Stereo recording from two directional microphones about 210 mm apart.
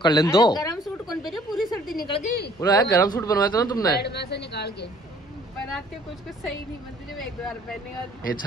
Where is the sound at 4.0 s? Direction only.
50° left (ahead or behind).